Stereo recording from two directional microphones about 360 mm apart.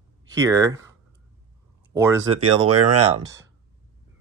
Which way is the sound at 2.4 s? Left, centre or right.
Right.